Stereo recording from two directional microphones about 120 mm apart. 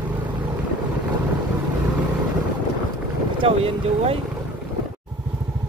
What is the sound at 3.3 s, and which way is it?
Speech, 50° right (ahead or behind).